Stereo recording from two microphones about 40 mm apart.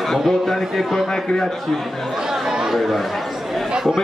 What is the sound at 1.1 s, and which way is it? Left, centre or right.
Speech, centre.